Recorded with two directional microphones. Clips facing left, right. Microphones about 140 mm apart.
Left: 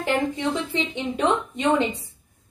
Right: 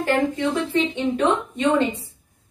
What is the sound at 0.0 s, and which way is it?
A woman's voice, 15° left (ahead or behind).